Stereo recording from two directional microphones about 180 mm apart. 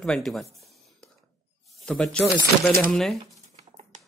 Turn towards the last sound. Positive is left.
turn(degrees=-40)  # may be behind; listen again after turning